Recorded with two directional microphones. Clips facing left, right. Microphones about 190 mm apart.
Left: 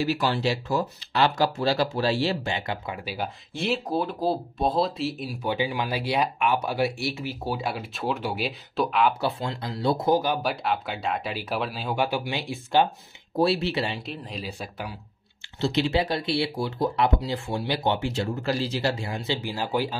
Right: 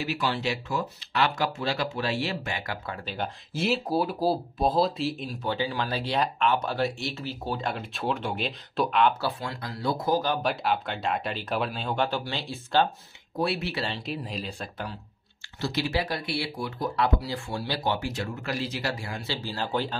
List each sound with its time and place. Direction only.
0.0 s speech: 40° left (ahead or behind); by 3.3 s 10° left (ahead or behind)
3.5 s speech: centre (ahead or behind)
9.2 s speech: 25° left (ahead or behind)
10.5 s speech: centre (ahead or behind)
13.4 s speech: 30° left (ahead or behind)
14.0 s speech: centre (ahead or behind)
15.6 s speech: 25° left (ahead or behind)